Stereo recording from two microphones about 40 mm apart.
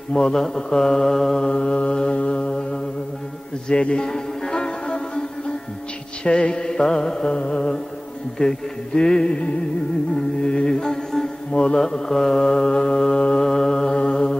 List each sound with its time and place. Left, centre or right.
0.1 s mantra: centre
1.5 s music: left
2.1 s mantra: left
3.6 s music: left
6.6 s mantra: centre
7.3 s music: left
10.1 s mantra: centre
11.5 s music: left
11.8 s mantra: centre
13.4 s mantra: centre